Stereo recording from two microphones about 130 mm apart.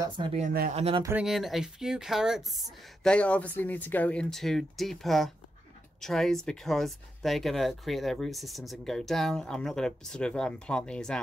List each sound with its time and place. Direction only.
0.4 s speech: 60° right (ahead or behind)
1.1 s speech: 5° right (ahead or behind)